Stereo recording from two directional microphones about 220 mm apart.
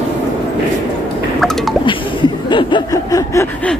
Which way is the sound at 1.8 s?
20° left (ahead or behind).